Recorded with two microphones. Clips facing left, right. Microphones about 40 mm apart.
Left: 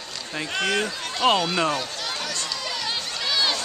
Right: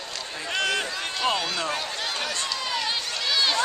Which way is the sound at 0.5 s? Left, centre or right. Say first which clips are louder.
Left 1 dB; centre.